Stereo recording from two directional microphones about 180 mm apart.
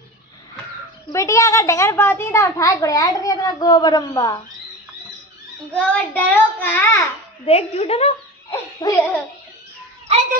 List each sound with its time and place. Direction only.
1.1 s a child's voice: 15° left (ahead or behind)
5.8 s a child's voice: 10° left (ahead or behind)
7.4 s a child's voice: 35° left (ahead or behind)
8.8 s a child's voice: 15° left (ahead or behind)